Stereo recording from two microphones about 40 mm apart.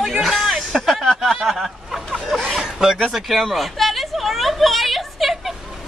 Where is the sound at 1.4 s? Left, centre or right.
Centre.